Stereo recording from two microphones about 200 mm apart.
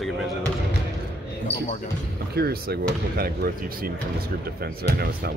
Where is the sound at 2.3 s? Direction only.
50° right (ahead or behind).